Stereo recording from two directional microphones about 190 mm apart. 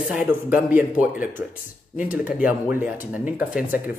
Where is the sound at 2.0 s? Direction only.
45° left (ahead or behind).